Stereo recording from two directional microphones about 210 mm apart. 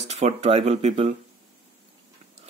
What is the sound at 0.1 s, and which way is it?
Speech, 30° right (ahead or behind).